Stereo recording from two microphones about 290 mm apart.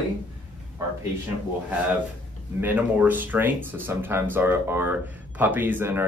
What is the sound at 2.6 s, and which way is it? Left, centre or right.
Speech, centre.